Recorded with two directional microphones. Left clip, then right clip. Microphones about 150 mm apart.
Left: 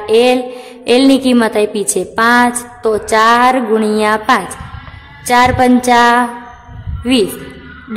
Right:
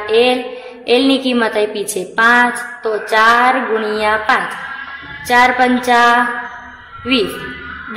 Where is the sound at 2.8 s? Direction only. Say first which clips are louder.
Left 4 dB; 60° left (ahead or behind).